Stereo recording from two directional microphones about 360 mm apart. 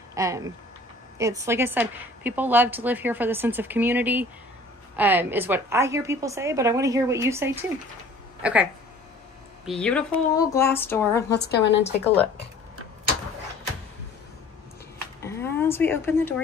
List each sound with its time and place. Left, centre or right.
0.1 s a woman's voice: centre
9.7 s speech: centre
11.3 s a woman's voice: left
15.2 s a sound: centre